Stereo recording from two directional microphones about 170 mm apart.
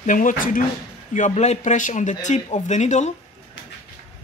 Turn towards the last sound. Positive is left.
turn(degrees=45)  # may be behind; listen again after turning